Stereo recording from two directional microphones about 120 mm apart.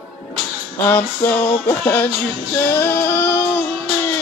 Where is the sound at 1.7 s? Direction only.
15° left (ahead or behind).